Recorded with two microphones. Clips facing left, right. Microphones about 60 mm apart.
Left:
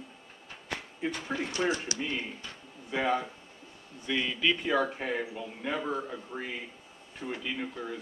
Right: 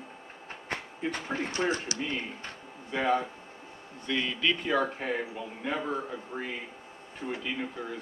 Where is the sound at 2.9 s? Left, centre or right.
Centre.